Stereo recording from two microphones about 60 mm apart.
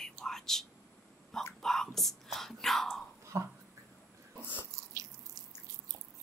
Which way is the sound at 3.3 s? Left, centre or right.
Right.